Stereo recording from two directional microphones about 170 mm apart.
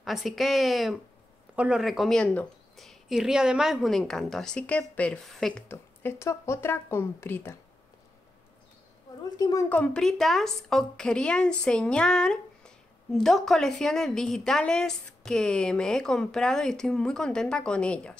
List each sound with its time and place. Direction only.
0.0 s a woman's voice: centre (ahead or behind)
9.2 s a woman's voice: 20° left (ahead or behind)
9.7 s a woman's voice: 5° left (ahead or behind)